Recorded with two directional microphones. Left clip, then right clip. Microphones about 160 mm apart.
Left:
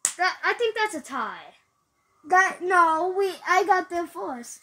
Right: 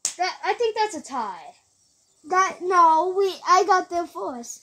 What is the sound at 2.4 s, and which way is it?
Speech, 20° left (ahead or behind).